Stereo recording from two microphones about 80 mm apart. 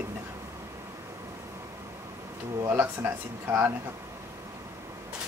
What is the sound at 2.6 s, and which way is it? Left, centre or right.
Speech, right.